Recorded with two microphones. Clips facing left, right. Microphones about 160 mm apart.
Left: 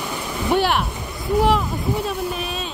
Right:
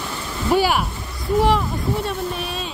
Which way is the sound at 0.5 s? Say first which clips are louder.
Right 1 dB; 5° right (ahead or behind).